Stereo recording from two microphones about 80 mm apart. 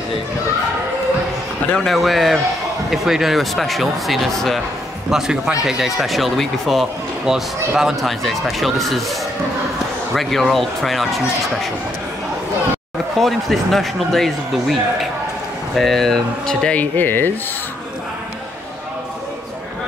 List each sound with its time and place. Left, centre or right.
1.9 s speech: centre
10.1 s speech: centre
13.2 s speech: centre
16.9 s speech: left